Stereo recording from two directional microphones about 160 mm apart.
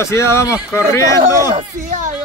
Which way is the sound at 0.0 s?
15° left (ahead or behind).